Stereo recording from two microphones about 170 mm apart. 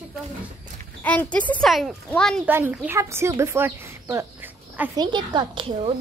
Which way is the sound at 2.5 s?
10° right (ahead or behind).